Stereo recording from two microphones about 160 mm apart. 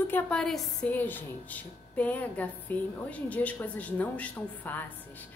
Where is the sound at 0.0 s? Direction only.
10° left (ahead or behind).